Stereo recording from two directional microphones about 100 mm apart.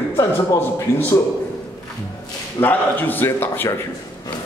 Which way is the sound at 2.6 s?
20° left (ahead or behind).